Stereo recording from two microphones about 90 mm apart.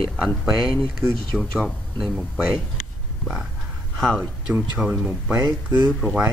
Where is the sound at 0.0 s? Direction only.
5° left (ahead or behind).